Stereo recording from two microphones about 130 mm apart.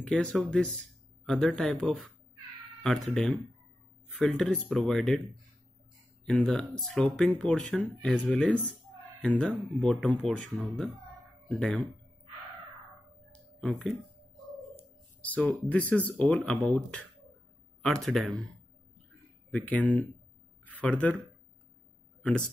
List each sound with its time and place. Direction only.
0.0 s speech: 5° left (ahead or behind)
6.2 s speech: 5° left (ahead or behind)
13.3 s a sound: 5° left (ahead or behind)
15.2 s speech: 10° left (ahead or behind)
19.5 s speech: 10° left (ahead or behind)